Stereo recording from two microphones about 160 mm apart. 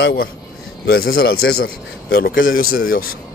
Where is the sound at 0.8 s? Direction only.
70° left (ahead or behind).